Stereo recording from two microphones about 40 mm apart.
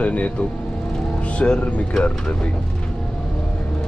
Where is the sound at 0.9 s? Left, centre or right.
Left.